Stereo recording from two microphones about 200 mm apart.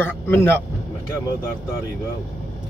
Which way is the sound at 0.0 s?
10° left (ahead or behind).